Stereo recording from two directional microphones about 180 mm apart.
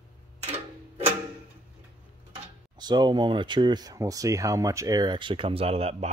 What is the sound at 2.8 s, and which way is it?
Speech, 25° right (ahead or behind).